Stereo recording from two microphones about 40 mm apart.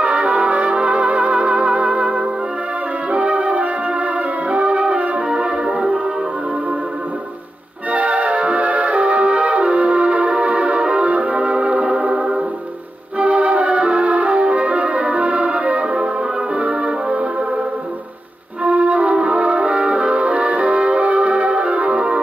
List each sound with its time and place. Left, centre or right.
0.0 s music: right
7.9 s music: right
18.6 s music: right